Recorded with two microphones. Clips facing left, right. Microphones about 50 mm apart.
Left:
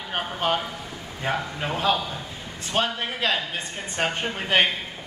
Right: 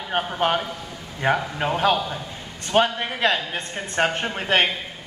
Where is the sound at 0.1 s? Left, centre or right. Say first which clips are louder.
Right 3 dB; centre.